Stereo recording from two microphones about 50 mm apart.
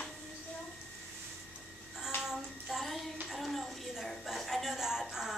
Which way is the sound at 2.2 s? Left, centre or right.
Centre.